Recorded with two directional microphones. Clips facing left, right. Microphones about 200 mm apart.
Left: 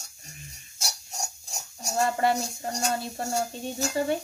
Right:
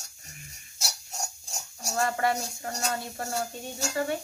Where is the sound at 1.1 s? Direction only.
Centre (ahead or behind).